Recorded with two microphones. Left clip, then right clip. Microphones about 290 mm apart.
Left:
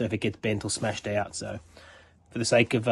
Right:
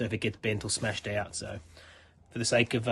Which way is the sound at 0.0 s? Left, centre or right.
Centre.